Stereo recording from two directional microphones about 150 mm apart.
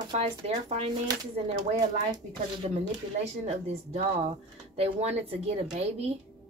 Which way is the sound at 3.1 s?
45° right (ahead or behind).